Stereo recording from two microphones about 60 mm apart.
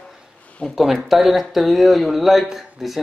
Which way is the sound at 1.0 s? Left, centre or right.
Centre.